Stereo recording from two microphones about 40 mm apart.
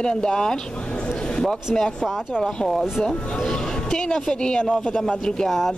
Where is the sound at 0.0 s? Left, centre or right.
Centre.